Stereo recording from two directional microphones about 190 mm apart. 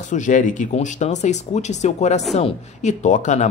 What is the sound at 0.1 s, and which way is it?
Speech, 40° left (ahead or behind).